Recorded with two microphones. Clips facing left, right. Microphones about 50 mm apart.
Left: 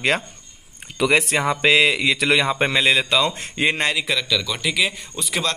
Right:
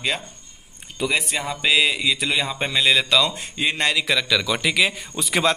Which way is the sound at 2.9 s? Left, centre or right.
Left.